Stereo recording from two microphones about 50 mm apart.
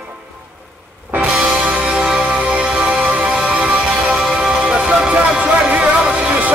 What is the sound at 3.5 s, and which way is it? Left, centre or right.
Music, centre.